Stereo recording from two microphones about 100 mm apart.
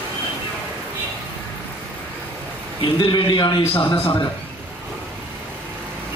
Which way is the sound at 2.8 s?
55° left (ahead or behind).